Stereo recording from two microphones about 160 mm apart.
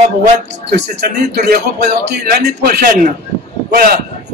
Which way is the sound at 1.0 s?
85° right.